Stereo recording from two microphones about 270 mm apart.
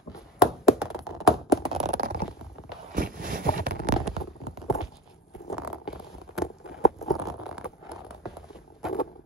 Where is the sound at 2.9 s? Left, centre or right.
Right.